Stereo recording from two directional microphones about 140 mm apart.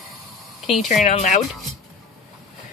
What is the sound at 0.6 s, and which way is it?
Speech, centre (ahead or behind).